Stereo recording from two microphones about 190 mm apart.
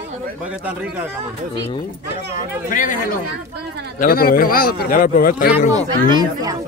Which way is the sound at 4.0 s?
50° left (ahead or behind).